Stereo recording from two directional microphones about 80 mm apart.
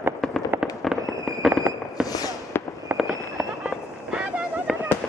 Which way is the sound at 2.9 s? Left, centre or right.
Right.